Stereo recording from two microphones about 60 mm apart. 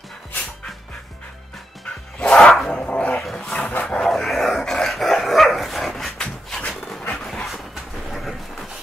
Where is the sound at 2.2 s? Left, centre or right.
Centre.